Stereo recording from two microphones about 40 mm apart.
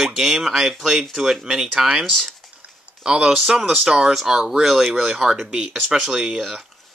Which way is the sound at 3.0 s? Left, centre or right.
Right.